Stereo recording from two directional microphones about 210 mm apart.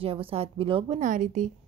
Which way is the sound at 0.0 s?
25° right (ahead or behind).